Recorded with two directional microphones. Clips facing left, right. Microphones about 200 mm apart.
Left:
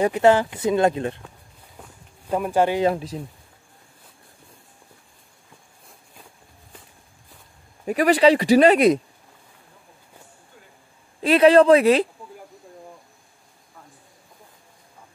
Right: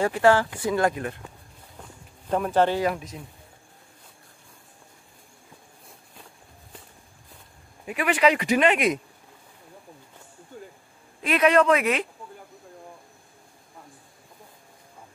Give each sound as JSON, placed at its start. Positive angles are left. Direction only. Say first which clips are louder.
{"t": 0.0, "sound": "speech", "louder": "left 3 dB", "side_deg": 20}
{"t": 1.8, "sound": "walk", "louder": "even", "side_deg": 10}
{"t": 2.8, "sound": "speech", "louder": "left 5 dB", "side_deg": 30}
{"t": 7.8, "sound": "speech", "louder": "left 6 dB", "side_deg": 40}
{"t": 11.2, "sound": "speech", "louder": "left 6 dB", "side_deg": 30}